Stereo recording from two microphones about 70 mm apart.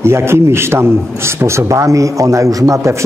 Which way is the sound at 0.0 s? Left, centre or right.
Right.